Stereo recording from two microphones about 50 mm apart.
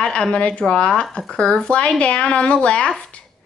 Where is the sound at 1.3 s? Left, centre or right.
Centre.